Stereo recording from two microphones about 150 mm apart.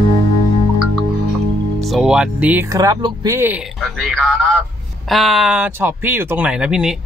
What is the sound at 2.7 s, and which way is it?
Speech, 25° right (ahead or behind).